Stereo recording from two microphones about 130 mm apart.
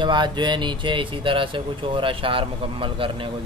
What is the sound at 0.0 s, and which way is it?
Speech, 35° right (ahead or behind).